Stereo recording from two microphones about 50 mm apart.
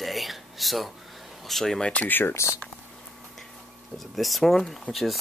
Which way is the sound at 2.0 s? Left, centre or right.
Left.